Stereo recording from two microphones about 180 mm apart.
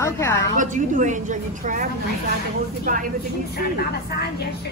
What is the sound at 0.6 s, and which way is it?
A woman's voice, 45° right (ahead or behind).